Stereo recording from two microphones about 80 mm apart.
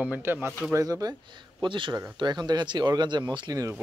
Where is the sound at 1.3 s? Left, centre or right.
Right.